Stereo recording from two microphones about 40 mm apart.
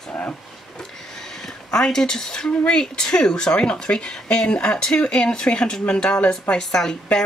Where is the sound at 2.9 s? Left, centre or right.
Centre.